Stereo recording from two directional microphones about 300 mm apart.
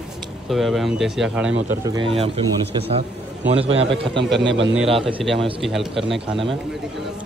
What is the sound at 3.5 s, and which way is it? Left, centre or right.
Speech, centre.